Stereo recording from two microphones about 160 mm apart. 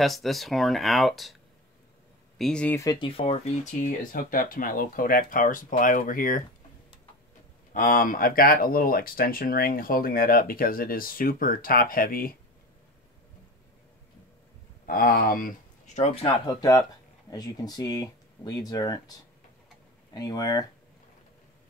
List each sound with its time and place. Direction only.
0.0 s speech: centre (ahead or behind)
2.3 s speech: 5° left (ahead or behind)
2.8 s speech: 25° left (ahead or behind)
4.0 s speech: 60° left (ahead or behind)
7.7 s speech: 60° left (ahead or behind)
14.9 s speech: 65° left (ahead or behind); by 16.3 s 45° left (ahead or behind)
16.4 s speech: 20° left (ahead or behind)
20.2 s speech: 25° left (ahead or behind)